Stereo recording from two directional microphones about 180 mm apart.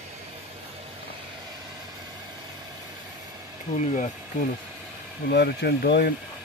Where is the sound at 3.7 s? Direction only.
45° left (ahead or behind).